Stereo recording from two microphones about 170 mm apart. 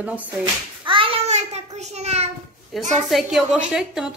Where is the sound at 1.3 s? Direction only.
40° right (ahead or behind).